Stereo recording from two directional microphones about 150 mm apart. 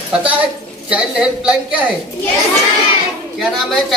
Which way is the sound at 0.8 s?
5° right (ahead or behind).